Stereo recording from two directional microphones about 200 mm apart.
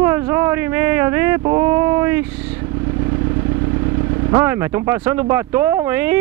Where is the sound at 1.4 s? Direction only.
15° right (ahead or behind).